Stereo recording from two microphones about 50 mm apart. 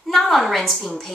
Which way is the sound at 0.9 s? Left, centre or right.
Centre.